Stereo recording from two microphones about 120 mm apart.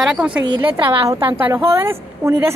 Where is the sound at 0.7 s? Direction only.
40° right (ahead or behind).